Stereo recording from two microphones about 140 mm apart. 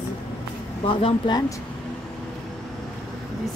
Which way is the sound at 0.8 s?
40° left (ahead or behind).